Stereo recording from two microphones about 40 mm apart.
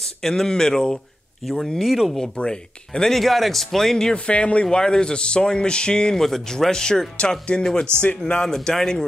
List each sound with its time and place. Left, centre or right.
0.2 s speech: centre
1.4 s speech: centre
2.3 s speech: left
3.1 s speech: centre
4.1 s speech: left
4.6 s speech: centre
6.1 s speech: centre
7.9 s speech: right
8.4 s speech: centre